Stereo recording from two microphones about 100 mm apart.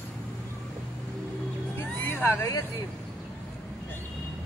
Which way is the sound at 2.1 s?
20° left (ahead or behind).